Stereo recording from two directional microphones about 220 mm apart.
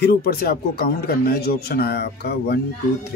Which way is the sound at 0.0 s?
45° left (ahead or behind).